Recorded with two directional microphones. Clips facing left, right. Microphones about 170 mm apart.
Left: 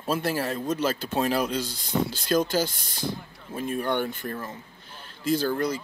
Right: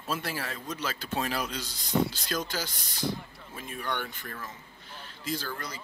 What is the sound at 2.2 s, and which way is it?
Speech, 50° left (ahead or behind).